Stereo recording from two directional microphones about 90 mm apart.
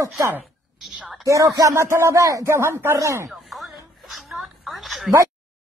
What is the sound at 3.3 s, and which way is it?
Music, centre (ahead or behind).